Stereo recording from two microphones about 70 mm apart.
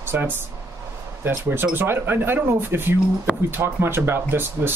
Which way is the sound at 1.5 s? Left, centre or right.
Right.